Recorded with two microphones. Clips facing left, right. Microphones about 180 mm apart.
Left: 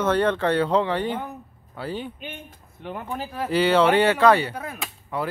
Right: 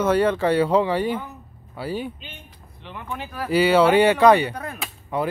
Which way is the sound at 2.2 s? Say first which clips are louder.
Left 6 dB; 50° left (ahead or behind).